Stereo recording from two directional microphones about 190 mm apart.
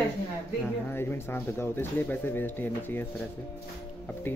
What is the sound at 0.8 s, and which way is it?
Speech, 10° left (ahead or behind).